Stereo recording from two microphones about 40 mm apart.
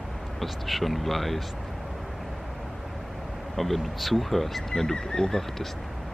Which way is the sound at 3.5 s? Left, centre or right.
Centre.